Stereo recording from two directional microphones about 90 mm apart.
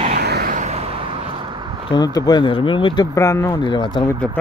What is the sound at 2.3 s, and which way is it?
Speech, 65° left (ahead or behind).